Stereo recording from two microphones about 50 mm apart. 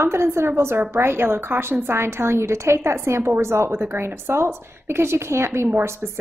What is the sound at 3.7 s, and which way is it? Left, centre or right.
A woman's voice, right.